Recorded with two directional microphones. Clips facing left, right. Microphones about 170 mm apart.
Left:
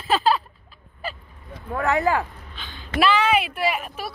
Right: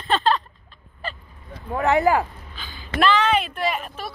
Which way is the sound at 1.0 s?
5° left (ahead or behind).